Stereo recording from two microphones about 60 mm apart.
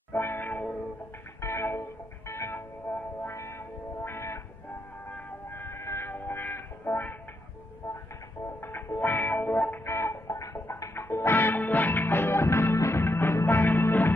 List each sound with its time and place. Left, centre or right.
0.1 s music: left
1.4 s music: left
2.2 s music: left
2.5 s music: left
3.3 s music: left
5.5 s a sound: left
7.8 s music: left
9.8 s music: left
11.1 s music: left
13.3 s music: left